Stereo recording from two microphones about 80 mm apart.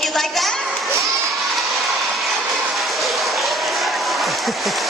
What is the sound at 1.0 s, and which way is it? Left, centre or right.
Children shouting, right.